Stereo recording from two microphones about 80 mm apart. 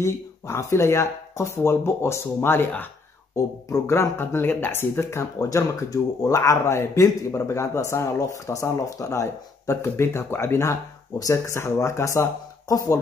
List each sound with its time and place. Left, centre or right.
0.0 s speech: left
3.3 s speech: left